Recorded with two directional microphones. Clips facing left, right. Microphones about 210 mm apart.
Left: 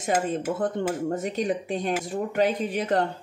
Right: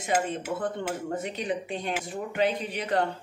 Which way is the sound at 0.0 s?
45° left (ahead or behind).